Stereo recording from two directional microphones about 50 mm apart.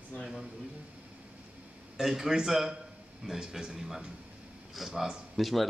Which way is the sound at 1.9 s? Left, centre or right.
Centre.